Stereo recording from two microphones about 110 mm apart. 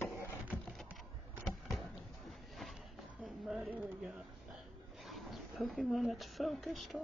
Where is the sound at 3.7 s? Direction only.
15° right (ahead or behind).